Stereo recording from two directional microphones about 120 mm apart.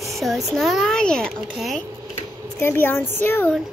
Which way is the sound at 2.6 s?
20° left (ahead or behind).